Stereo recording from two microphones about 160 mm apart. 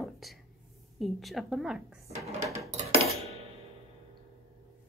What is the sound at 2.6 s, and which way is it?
Dishes, 45° right (ahead or behind).